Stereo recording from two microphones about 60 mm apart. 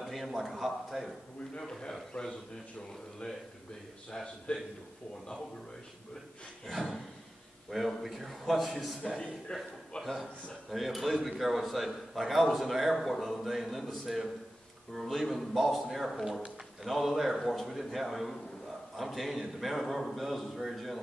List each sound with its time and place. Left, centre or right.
0.0 s speech: centre
1.6 s a man's voice: centre
3.2 s a man's voice: centre
4.5 s a man's voice: centre
6.6 s a man's voice: centre
9.5 s a man's voice: centre